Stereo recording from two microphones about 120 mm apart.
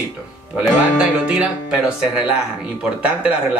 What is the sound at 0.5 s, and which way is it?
Speech, 10° right (ahead or behind).